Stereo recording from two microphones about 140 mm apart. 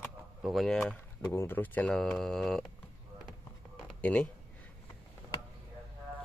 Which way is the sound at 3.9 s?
10° left (ahead or behind).